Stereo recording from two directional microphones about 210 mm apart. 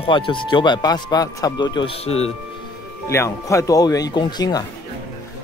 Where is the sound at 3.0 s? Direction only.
15° left (ahead or behind).